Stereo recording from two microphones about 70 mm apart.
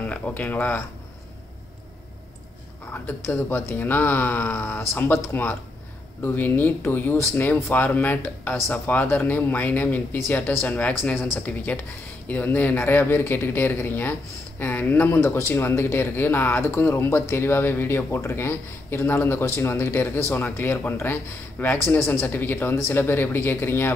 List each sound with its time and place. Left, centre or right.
0.0 s speech: left
3.3 s speech: left
15.1 s speech: left